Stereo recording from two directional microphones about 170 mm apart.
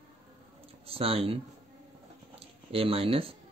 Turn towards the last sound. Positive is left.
turn(degrees=-35)  # may be behind; listen again after turning